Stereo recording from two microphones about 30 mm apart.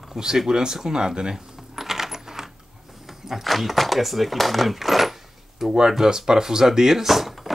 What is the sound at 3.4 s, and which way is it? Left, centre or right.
Speech, centre.